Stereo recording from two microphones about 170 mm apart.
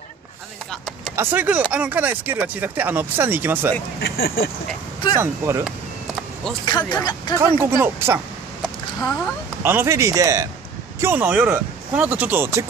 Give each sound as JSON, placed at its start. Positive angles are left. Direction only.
{"t": 0.7, "sound": "vehicle", "side_deg": 5}
{"t": 1.1, "sound": "speech", "side_deg": -10}
{"t": 4.0, "sound": "speech", "side_deg": 65}
{"t": 5.2, "sound": "speech", "side_deg": -15}
{"t": 6.6, "sound": "speech", "side_deg": 25}
{"t": 7.3, "sound": "speech", "side_deg": -15}
{"t": 9.6, "sound": "speech", "side_deg": -15}